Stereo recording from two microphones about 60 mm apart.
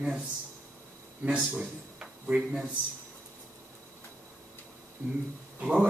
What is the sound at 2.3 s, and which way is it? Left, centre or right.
Speech, centre.